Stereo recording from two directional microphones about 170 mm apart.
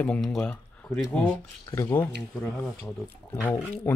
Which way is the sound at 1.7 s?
15° left (ahead or behind).